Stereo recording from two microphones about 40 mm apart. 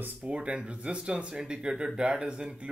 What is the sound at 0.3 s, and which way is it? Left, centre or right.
Speech, right.